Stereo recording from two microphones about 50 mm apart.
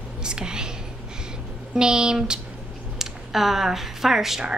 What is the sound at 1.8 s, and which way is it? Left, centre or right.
A woman's voice, centre.